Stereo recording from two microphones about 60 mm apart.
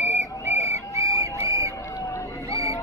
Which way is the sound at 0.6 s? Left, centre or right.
Right.